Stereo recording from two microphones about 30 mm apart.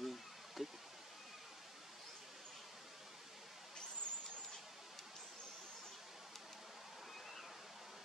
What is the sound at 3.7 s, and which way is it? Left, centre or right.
Vehicle, left.